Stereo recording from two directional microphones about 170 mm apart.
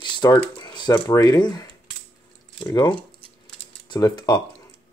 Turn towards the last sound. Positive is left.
turn(degrees=20)  # may be behind; listen again after turning